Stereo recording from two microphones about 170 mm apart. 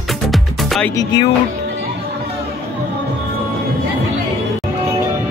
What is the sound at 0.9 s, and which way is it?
Speech, 25° left (ahead or behind).